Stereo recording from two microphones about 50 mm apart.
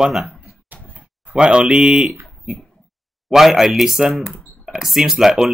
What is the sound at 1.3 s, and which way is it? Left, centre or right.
Speech, right.